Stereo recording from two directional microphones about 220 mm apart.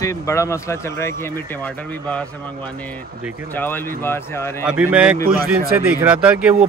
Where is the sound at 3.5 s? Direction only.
10° left (ahead or behind).